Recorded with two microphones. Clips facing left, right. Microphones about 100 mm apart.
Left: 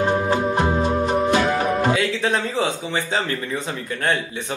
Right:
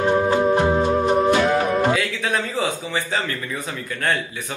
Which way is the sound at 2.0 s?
25° left (ahead or behind).